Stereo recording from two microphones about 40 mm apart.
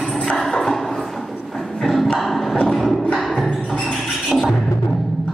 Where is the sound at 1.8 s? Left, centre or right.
Centre.